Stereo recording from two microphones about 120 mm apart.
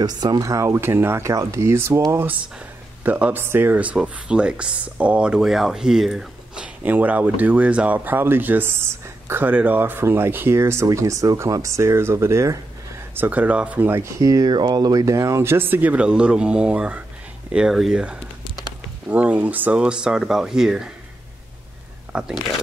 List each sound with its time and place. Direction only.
0.0 s speech: 35° right (ahead or behind); by 20.9 s 5° right (ahead or behind)
22.1 s speech: 10° right (ahead or behind)